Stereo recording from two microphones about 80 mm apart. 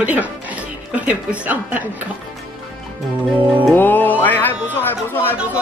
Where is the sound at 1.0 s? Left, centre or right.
Centre.